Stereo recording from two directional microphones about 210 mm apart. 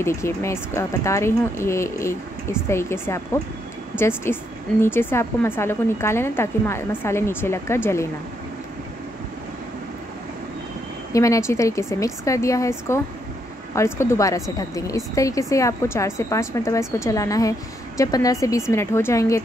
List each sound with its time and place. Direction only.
0.0 s speech: 15° left (ahead or behind)
4.2 s speech: 10° left (ahead or behind)
11.1 s speech: 15° left (ahead or behind)